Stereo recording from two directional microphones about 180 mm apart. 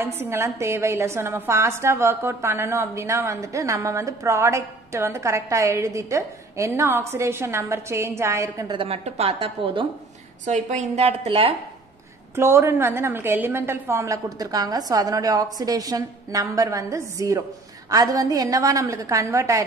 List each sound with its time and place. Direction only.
0.0 s a woman's voice: 15° right (ahead or behind)
8.7 s a woman's voice: 35° right (ahead or behind)
12.4 s a woman's voice: 15° right (ahead or behind)